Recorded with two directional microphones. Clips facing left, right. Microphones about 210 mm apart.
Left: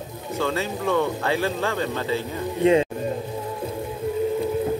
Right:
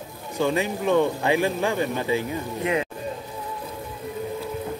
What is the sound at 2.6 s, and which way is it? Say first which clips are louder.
Speech: left 8 dB; 30° left (ahead or behind).